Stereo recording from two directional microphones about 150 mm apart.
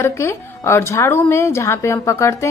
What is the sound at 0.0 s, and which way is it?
A woman's voice, 20° left (ahead or behind).